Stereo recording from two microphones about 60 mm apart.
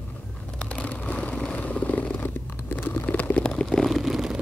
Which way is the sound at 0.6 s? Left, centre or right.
Left.